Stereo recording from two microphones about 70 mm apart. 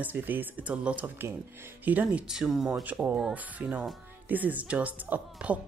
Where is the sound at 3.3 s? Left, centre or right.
Centre.